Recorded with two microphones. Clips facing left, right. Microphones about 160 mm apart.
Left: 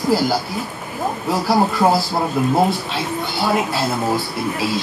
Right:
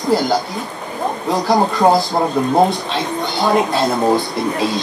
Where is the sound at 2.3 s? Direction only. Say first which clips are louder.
Right 2 dB; 5° left (ahead or behind).